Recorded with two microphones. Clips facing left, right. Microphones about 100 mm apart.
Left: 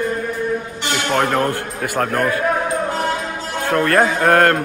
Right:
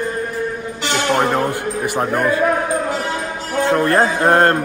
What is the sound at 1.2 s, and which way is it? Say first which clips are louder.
A man's voice: even; 10° right (ahead or behind).